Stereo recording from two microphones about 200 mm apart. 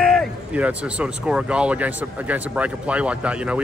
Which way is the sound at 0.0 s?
Centre (ahead or behind).